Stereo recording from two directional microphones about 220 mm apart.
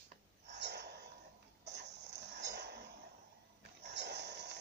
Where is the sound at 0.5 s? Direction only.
50° right (ahead or behind).